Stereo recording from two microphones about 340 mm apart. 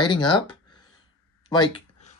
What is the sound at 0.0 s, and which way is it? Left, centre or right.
Speech, centre.